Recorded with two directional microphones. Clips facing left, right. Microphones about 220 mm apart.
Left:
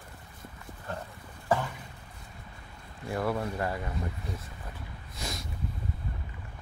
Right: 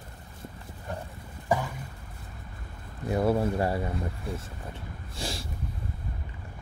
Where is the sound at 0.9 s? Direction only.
15° right (ahead or behind).